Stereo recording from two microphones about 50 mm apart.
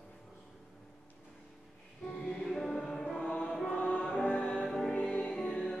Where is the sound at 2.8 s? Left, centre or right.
Centre.